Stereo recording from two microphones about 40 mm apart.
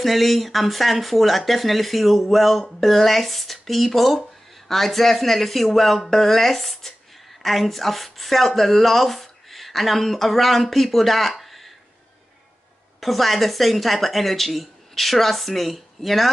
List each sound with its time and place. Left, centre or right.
0.0 s speech: centre
13.0 s speech: centre